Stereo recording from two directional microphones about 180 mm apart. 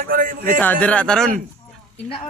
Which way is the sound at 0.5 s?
10° left (ahead or behind).